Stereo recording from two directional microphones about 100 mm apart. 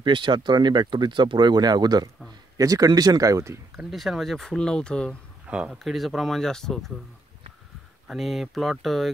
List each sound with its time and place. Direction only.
0.0 s speech: 55° right (ahead or behind); by 3.5 s 35° right (ahead or behind)
3.7 s speech: 5° right (ahead or behind)
5.5 s speech: 10° right (ahead or behind)
5.8 s speech: centre (ahead or behind)
8.1 s speech: centre (ahead or behind)